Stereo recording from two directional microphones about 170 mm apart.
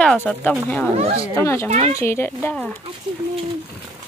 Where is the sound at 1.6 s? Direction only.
40° right (ahead or behind).